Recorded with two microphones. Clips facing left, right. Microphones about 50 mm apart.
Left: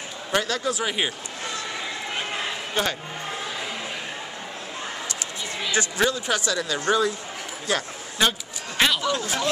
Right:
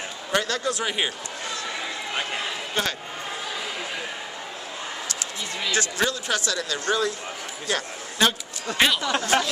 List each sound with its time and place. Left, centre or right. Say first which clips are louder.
0.3 s a man's voice: even; centre
2.7 s a man's voice: left 2 dB; centre
5.7 s speech: left 2 dB; centre
7.7 s a man's voice: left 2 dB; centre
9.0 s speech: right 3 dB; right